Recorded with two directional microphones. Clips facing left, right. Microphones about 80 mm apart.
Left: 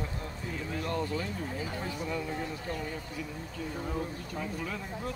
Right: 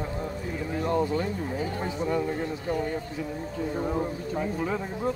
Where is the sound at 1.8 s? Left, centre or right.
Right.